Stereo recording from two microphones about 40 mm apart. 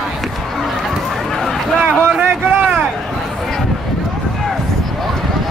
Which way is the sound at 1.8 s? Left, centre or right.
Right.